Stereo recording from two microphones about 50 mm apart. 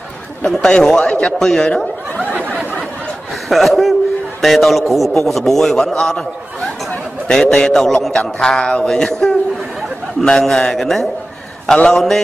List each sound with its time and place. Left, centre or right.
0.5 s a man's voice: centre
1.4 s a man's voice: centre
2.1 s a sound: left
3.4 s a man's voice: centre
7.2 s a man's voice: centre